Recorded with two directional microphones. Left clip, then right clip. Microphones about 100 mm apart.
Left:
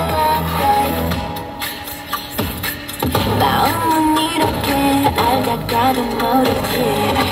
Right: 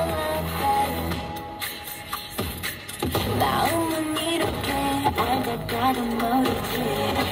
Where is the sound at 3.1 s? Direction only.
35° right (ahead or behind).